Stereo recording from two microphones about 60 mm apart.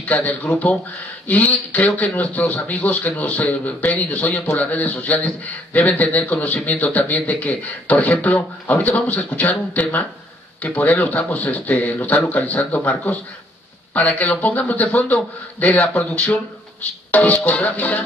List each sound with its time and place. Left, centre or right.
0.0 s speech: left